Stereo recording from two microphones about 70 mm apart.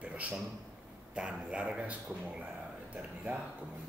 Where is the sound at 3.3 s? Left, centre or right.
Right.